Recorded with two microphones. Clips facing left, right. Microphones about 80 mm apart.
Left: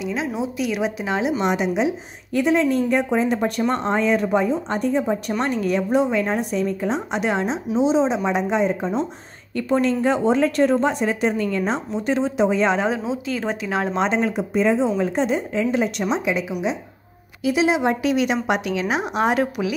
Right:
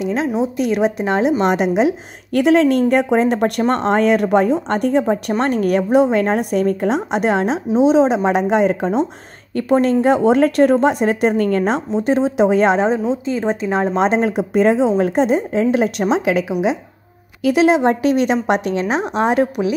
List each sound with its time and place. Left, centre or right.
0.0 s a sound: right
0.4 s a woman's voice: right
5.4 s a woman's voice: right
9.6 s speech: right
13.3 s a woman's voice: right
13.9 s speech: right
17.4 s a woman's voice: right
19.1 s a woman's voice: right